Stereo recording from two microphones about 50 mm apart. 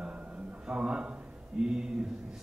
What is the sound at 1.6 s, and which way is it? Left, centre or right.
Speech, centre.